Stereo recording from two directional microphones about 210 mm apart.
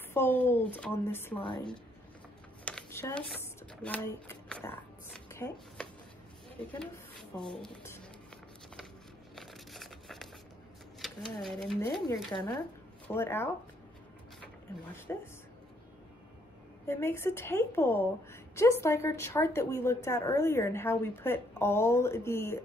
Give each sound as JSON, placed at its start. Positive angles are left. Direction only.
{"t": 0.1, "sound": "a woman's voice", "side_deg": 10}
{"t": 1.4, "sound": "a woman's voice", "side_deg": 25}
{"t": 2.6, "sound": "a sound", "side_deg": 10}
{"t": 6.8, "sound": "speech", "side_deg": 5}
{"t": 9.3, "sound": "a sound", "side_deg": 0}
{"t": 11.0, "sound": "speech", "side_deg": 0}
{"t": 12.3, "sound": "a woman's voice", "side_deg": 20}
{"t": 15.1, "sound": "a woman's voice", "side_deg": 10}
{"t": 16.8, "sound": "a woman's voice", "side_deg": 10}